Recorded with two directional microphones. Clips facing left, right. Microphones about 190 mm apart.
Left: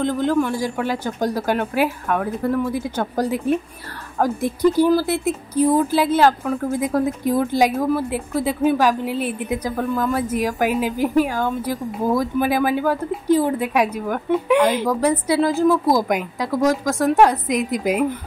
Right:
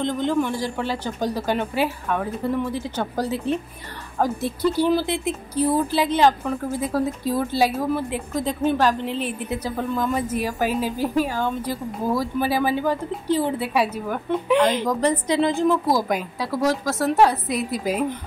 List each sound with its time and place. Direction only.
0.0 s a woman's voice: 5° left (ahead or behind)